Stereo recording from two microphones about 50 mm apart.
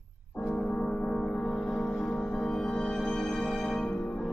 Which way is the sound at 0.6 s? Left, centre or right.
Centre.